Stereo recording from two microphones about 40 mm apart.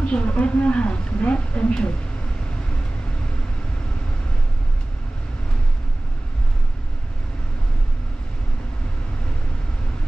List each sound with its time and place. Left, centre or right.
0.0 s a woman's voice: left